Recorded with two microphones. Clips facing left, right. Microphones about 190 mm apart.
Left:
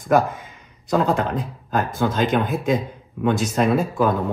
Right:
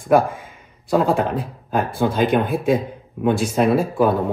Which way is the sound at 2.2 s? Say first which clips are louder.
Right 4 dB; 55° right (ahead or behind).